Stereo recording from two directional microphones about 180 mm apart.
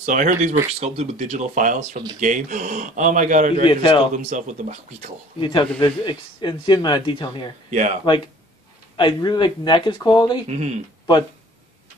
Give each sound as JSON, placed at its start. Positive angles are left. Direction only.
{"t": 0.0, "sound": "speech", "side_deg": -45}
{"t": 3.6, "sound": "speech", "side_deg": 30}
{"t": 4.2, "sound": "speech", "side_deg": -40}
{"t": 5.4, "sound": "speech", "side_deg": 30}
{"t": 7.7, "sound": "speech", "side_deg": -40}
{"t": 8.9, "sound": "speech", "side_deg": 25}
{"t": 10.5, "sound": "speech", "side_deg": -35}